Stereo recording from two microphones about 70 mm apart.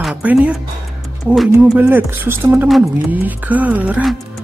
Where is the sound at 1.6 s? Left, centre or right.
Right.